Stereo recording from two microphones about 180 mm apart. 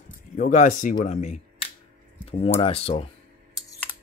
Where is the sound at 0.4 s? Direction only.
45° left (ahead or behind).